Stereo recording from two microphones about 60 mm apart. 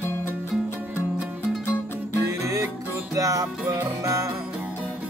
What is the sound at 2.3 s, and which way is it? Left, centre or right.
Music, right.